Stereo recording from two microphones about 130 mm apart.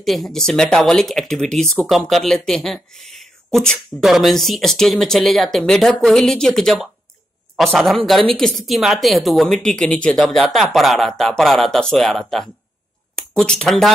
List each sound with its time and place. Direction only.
0.0 s speech: centre (ahead or behind)